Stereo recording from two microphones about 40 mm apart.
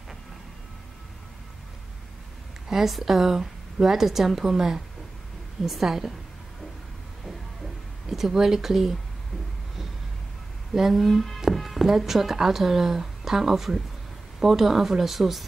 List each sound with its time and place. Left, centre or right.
2.7 s a woman's voice: centre
8.1 s a woman's voice: centre
10.7 s speech: centre
11.0 s speech: centre
11.5 s music: centre
12.0 s a woman's voice: centre